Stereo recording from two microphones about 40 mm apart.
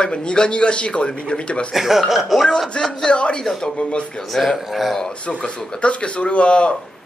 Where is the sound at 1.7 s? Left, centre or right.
Centre.